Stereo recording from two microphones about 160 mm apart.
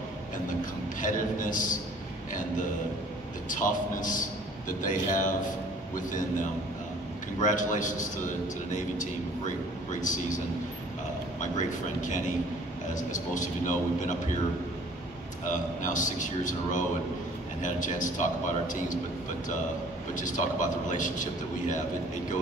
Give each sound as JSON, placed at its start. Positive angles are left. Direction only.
{"t": 1.0, "sound": "a man's voice", "side_deg": 55}
{"t": 3.4, "sound": "a man's voice", "side_deg": 55}
{"t": 7.3, "sound": "speech", "side_deg": 50}
{"t": 11.5, "sound": "speech", "side_deg": 50}
{"t": 15.4, "sound": "speech", "side_deg": 55}
{"t": 20.2, "sound": "speech", "side_deg": 55}